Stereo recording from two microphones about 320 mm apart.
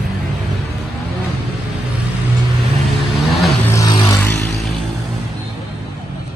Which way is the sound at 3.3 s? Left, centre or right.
Centre.